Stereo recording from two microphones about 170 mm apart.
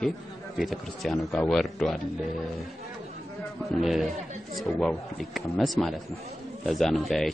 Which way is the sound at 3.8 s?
Centre (ahead or behind).